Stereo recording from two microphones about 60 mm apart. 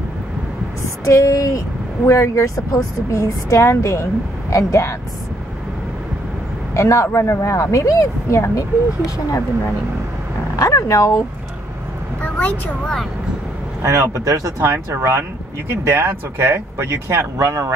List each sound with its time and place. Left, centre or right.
1.0 s a woman's voice: left
6.7 s a woman's voice: left
10.5 s a woman's voice: left
12.2 s vehicle: left
13.8 s speech: right